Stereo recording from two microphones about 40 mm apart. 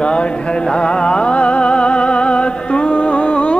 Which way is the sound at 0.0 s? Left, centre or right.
Left.